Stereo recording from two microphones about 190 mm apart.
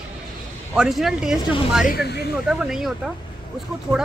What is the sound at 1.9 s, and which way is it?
Speech, 60° left (ahead or behind).